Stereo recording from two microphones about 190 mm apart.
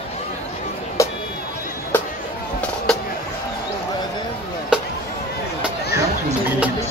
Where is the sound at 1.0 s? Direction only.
15° left (ahead or behind).